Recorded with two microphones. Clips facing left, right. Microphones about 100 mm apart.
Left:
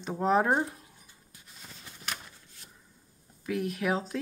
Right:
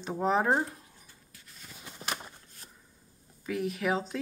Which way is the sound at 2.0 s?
40° right (ahead or behind).